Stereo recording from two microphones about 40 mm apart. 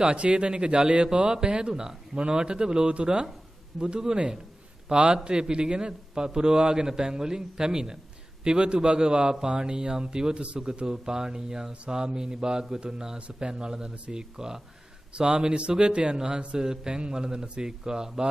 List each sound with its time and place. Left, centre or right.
0.0 s a man's voice: right
3.7 s a man's voice: centre
4.8 s a man's voice: right